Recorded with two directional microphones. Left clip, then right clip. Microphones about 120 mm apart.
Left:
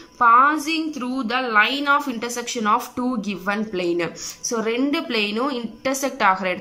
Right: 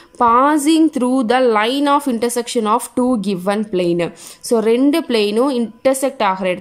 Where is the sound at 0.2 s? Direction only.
55° right (ahead or behind).